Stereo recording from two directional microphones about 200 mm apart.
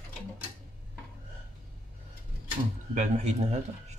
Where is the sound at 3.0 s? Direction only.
35° right (ahead or behind).